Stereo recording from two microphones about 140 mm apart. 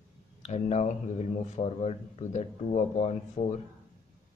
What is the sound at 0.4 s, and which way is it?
Speech, 50° left (ahead or behind).